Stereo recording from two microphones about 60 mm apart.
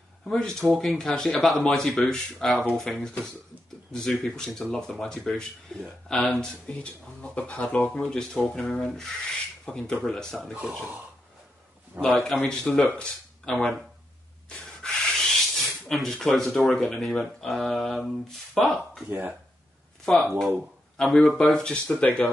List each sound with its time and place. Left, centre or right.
0.2 s rub: centre
2.8 s a man's voice: centre
3.9 s rub: centre
6.3 s speech: centre
8.1 s rub: centre
10.6 s a man's voice: centre
12.0 s a man's voice: centre
14.5 s rub: centre
19.0 s speech: right
20.1 s a man's voice: centre
21.0 s rub: centre